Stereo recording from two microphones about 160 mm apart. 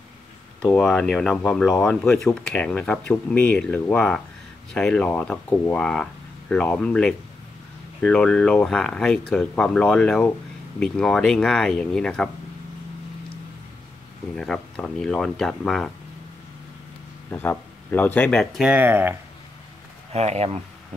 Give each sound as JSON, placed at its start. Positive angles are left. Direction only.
{"t": 0.7, "sound": "speech", "side_deg": 0}
{"t": 14.3, "sound": "speech", "side_deg": 5}
{"t": 17.3, "sound": "speech", "side_deg": 10}
{"t": 20.1, "sound": "speech", "side_deg": -45}